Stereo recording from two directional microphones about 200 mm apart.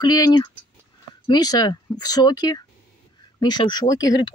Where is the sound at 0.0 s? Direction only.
20° left (ahead or behind).